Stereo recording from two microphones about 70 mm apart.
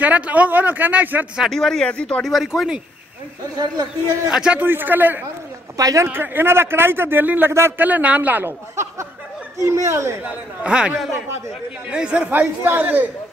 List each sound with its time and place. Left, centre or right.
0.0 s speech: right
1.5 s speech: centre
2.2 s speech: centre
3.5 s speech: right
4.3 s speech: centre
4.6 s speech: right
5.8 s speech: right
6.0 s a man's voice: right
7.8 s speech: right
8.5 s a man's voice: right
10.2 s speech: centre
12.3 s speech: right